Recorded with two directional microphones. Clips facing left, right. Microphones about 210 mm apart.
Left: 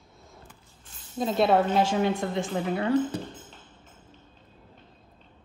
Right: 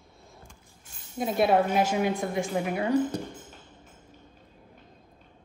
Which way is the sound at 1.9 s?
15° right (ahead or behind).